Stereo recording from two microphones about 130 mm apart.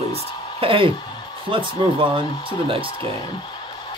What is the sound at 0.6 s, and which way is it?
Speech, 45° right (ahead or behind).